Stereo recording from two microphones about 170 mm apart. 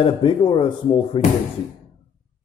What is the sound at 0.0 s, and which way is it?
Speech, 30° left (ahead or behind).